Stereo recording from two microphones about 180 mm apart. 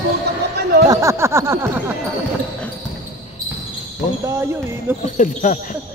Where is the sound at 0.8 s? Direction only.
15° right (ahead or behind).